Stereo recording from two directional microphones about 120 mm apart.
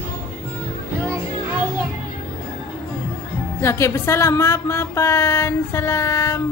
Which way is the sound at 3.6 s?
25° left (ahead or behind).